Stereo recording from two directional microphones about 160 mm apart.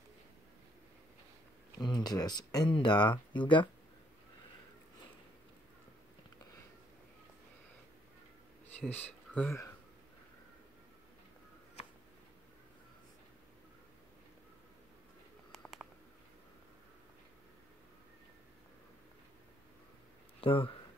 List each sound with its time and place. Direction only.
1.8 s speech: 25° left (ahead or behind)
8.7 s speech: 10° left (ahead or behind)
15.5 s a sound: centre (ahead or behind)
20.3 s speech: 35° left (ahead or behind)